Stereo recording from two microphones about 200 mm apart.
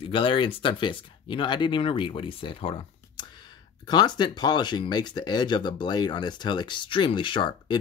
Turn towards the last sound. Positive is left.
turn(degrees=25)  # may be behind; listen again after turning